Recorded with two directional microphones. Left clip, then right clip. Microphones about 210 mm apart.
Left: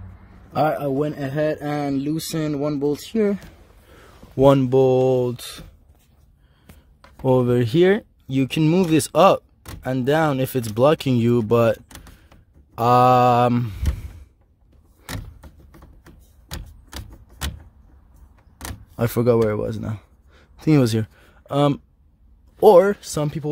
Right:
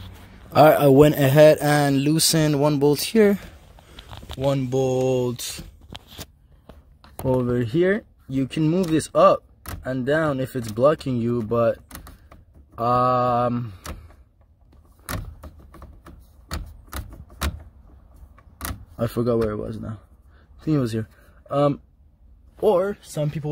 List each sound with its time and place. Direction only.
0.5 s speech: 25° right (ahead or behind)
4.4 s speech: 35° left (ahead or behind)
4.6 s mantra: 25° left (ahead or behind)
7.2 s speech: 35° left (ahead or behind); by 13.7 s 50° left (ahead or behind)
18.9 s speech: 55° left (ahead or behind); by 21.8 s 40° left (ahead or behind)
22.6 s speech: 55° left (ahead or behind)
23.2 s speech: 30° left (ahead or behind)